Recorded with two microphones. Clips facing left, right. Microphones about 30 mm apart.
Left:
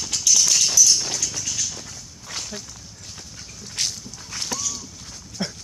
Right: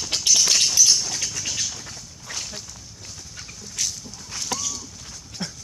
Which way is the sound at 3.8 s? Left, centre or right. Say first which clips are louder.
Left 2 dB; left.